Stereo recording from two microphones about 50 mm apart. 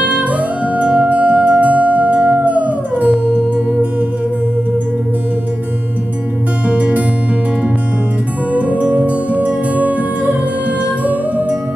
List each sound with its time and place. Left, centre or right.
0.0 s music: right
6.7 s music: right
8.5 s music: right